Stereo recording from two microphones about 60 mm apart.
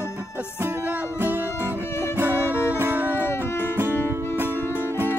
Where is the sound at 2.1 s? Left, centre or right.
Right.